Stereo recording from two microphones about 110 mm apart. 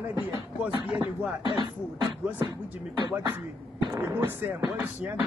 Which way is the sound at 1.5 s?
45° right (ahead or behind).